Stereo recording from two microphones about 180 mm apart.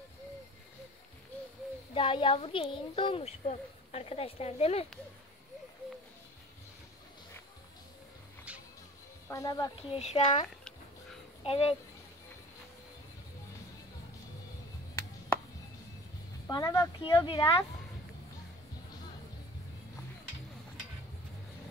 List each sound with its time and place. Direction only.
2.0 s a woman's voice: 30° left (ahead or behind)
8.5 s music: 5° right (ahead or behind)
9.3 s speech: 20° left (ahead or behind)
9.8 s a woman's voice: 35° left (ahead or behind)
11.4 s a woman's voice: 30° left (ahead or behind)
16.4 s speech: 20° left (ahead or behind)